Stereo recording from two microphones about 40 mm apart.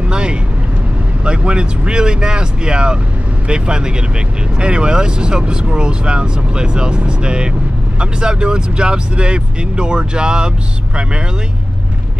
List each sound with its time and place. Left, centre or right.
0.1 s vehicle: right
1.2 s speech: right